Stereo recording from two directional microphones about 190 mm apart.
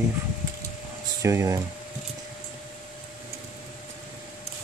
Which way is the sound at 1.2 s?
15° right (ahead or behind).